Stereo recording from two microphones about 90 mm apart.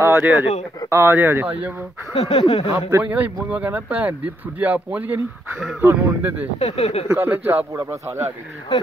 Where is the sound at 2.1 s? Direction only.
90° left.